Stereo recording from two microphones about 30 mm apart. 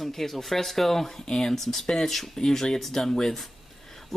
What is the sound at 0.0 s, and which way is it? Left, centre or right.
Speech, centre.